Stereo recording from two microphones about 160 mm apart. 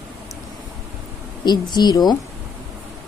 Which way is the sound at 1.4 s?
25° left (ahead or behind).